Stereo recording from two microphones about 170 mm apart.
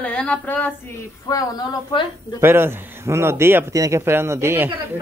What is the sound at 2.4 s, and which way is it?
Speech, 15° right (ahead or behind).